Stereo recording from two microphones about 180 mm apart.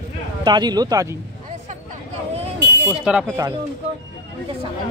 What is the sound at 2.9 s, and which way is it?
Speech, 5° right (ahead or behind).